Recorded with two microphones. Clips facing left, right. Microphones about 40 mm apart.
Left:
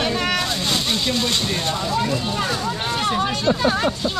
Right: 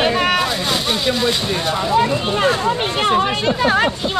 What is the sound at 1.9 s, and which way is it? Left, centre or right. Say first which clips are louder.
Speech: right 8 dB; right.